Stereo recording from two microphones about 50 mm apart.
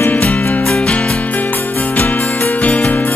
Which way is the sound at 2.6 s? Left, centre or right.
Left.